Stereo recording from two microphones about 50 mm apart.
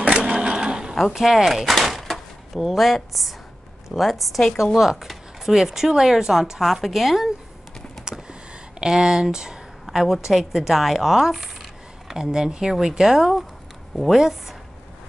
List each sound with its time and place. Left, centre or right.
0.0 s sewing machine: centre
1.1 s a woman's voice: centre
8.0 s a sound: centre
9.9 s a woman's voice: centre